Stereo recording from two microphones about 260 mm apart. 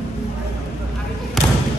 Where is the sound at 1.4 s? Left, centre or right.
Centre.